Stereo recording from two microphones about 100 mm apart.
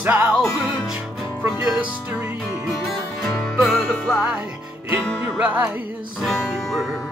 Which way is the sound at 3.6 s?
Centre (ahead or behind).